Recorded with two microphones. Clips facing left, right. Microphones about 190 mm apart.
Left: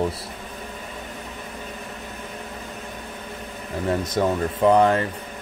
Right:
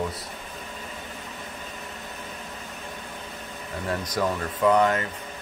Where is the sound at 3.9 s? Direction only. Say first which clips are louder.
Left 4 dB; 25° left (ahead or behind).